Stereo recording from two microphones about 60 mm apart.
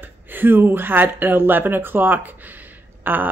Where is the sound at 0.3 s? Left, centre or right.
Right.